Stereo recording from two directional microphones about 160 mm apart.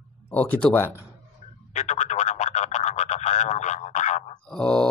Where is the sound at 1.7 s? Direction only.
45° left (ahead or behind).